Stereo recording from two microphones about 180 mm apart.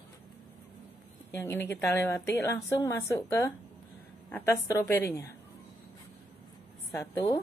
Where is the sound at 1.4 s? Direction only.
15° left (ahead or behind).